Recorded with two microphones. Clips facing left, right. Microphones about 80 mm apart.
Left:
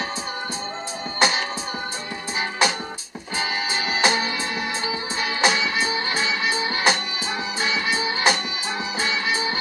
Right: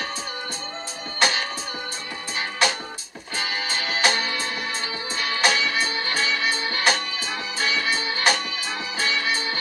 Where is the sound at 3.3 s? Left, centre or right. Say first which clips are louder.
Left 2 dB; centre.